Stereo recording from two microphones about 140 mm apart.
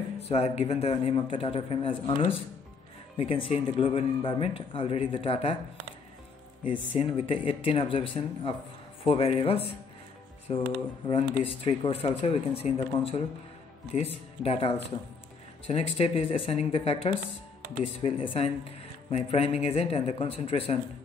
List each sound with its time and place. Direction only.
0.3 s speech: 45° left (ahead or behind)
6.9 s speech: 40° left (ahead or behind)